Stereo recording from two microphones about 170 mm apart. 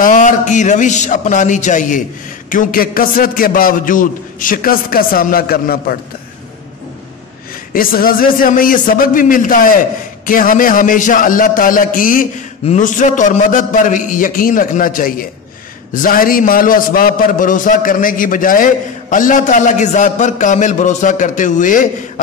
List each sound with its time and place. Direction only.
0.0 s a man's voice: 50° left (ahead or behind)
7.7 s a man's voice: 60° left (ahead or behind)